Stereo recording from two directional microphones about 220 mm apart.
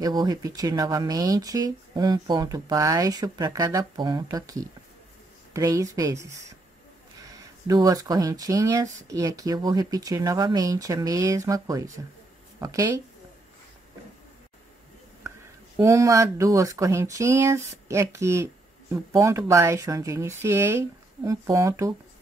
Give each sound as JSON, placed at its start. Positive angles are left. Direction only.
{"t": 0.0, "sound": "speech", "side_deg": -20}
{"t": 15.8, "sound": "speech", "side_deg": -15}